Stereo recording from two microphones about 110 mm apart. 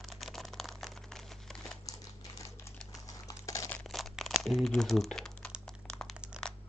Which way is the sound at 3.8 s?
Centre (ahead or behind).